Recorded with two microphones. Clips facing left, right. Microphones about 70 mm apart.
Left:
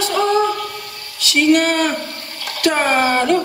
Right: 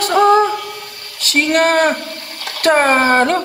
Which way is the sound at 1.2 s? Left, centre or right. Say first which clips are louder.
Even; right.